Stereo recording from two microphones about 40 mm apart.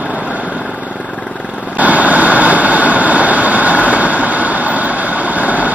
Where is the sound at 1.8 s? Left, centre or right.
Right.